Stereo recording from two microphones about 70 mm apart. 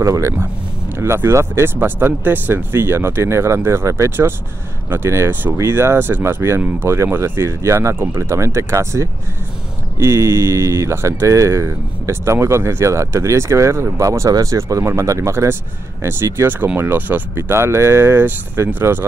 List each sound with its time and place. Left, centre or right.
0.0 s speech: right
0.9 s speech: right
16.0 s speech: right